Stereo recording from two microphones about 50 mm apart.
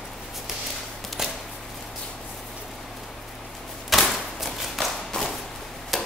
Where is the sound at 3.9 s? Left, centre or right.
Centre.